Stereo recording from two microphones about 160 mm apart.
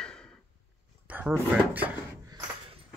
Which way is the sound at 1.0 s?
10° right (ahead or behind).